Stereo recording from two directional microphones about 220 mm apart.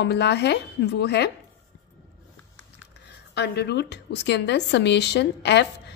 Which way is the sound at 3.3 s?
50° left (ahead or behind).